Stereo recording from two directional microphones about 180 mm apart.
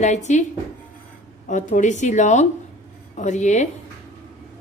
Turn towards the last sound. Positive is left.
turn(degrees=40)  # may be behind; listen again after turning